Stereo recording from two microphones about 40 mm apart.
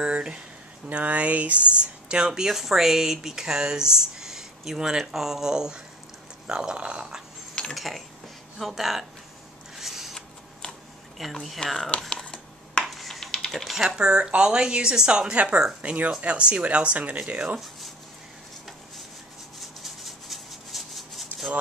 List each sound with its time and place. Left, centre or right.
0.0 s a woman's voice: right
0.8 s speech: right
1.8 s a woman's voice: right
2.4 s a woman's voice: centre
7.7 s speech: centre
9.8 s scissors: centre
11.2 s speech: centre
11.6 s speech: centre
12.2 s computer keyboard: centre
12.8 s a sound: centre
13.5 s speech: centre
13.8 s a woman's voice: right
19.8 s a sound: centre